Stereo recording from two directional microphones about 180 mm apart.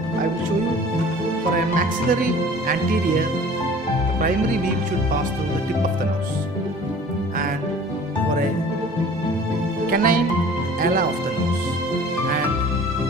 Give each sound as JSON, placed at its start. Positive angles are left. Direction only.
{"t": 1.8, "sound": "speech", "side_deg": -50}
{"t": 9.8, "sound": "speech", "side_deg": -55}